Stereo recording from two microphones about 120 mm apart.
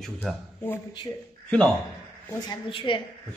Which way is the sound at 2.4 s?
45° left (ahead or behind).